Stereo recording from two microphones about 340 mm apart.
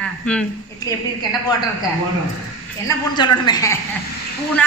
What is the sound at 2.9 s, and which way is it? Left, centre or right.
Speech, centre.